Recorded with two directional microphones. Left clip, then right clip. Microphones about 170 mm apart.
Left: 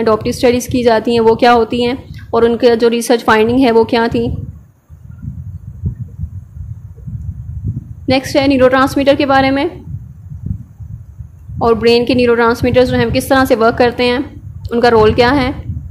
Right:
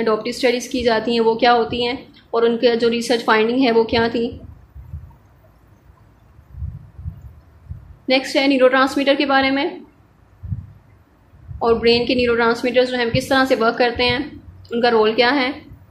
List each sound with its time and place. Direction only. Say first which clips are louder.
0.0 s a woman's voice: left 6 dB; 45° left (ahead or behind)
8.1 s a woman's voice: left 4 dB; 45° left (ahead or behind)
11.6 s a woman's voice: left 5 dB; 45° left (ahead or behind)